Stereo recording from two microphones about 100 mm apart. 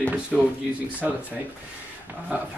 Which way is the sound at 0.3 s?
Centre (ahead or behind).